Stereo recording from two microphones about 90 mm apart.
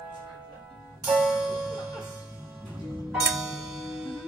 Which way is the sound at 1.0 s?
5° right (ahead or behind).